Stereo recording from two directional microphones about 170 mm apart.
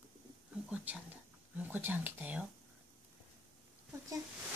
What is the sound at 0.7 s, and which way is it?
Whispering, 5° right (ahead or behind).